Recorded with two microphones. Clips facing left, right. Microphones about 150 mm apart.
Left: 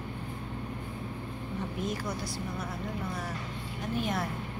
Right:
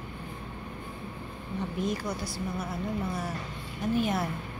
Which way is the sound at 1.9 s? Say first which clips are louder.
Right 2 dB; centre (ahead or behind).